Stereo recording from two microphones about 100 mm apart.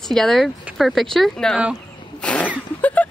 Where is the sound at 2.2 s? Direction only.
15° left (ahead or behind).